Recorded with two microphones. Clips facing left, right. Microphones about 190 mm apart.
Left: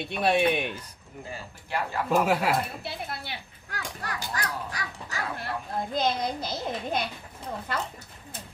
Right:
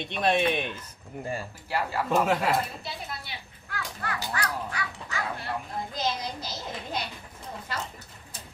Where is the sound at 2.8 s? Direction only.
55° left (ahead or behind); by 5.2 s 40° left (ahead or behind).